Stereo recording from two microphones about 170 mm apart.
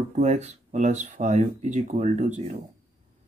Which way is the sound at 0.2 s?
45° right (ahead or behind).